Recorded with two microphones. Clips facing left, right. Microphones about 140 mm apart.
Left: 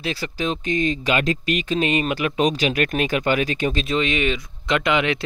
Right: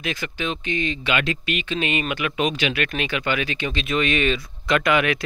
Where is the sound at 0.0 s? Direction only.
35° left (ahead or behind).